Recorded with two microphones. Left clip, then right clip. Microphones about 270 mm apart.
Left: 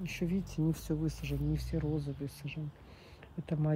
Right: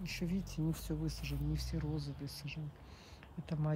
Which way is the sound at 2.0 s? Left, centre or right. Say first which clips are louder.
Left 5 dB; centre.